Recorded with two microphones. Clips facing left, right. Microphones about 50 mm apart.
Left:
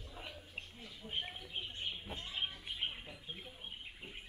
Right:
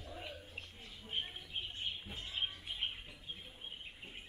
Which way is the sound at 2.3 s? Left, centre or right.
Centre.